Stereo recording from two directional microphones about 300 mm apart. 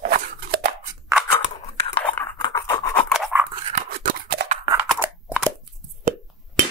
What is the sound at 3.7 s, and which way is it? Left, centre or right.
Scissors, right.